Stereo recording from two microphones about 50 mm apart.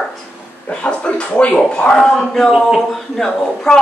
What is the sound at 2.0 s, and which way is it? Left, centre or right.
A man's voice, centre.